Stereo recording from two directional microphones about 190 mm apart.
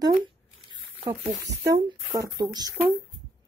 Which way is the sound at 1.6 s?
15° right (ahead or behind).